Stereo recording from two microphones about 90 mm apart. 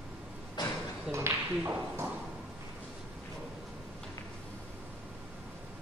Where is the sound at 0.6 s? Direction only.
55° left (ahead or behind).